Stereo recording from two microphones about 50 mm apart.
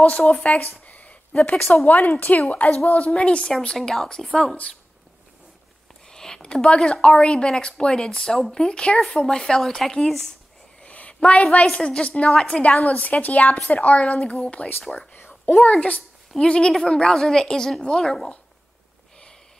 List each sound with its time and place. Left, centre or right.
0.3 s a woman's voice: left
0.6 s a sound: left
1.9 s a woman's voice: left; by 3.5 s centre
3.7 s a woman's voice: centre
6.0 s a woman's voice: centre
10.8 s a sound: left
11.6 s a woman's voice: centre
12.8 s a woman's voice: left
15.5 s a woman's voice: centre